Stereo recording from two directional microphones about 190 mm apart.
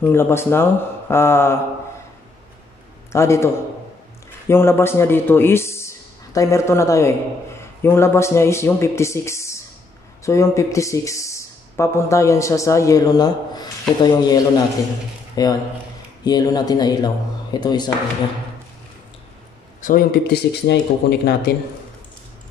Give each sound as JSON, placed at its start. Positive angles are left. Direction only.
{"t": 0.0, "sound": "speech", "side_deg": 15}
{"t": 3.1, "sound": "a man's voice", "side_deg": 15}
{"t": 4.5, "sound": "speech", "side_deg": 10}
{"t": 19.8, "sound": "speech", "side_deg": 45}